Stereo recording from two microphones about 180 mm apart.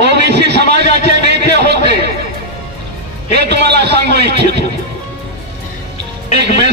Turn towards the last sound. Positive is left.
turn(degrees=-70)  # may be behind; listen again after turning